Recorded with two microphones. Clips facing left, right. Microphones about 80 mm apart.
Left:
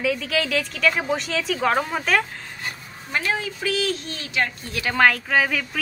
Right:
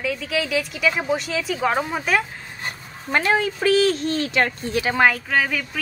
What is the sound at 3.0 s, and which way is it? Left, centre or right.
Speech, right.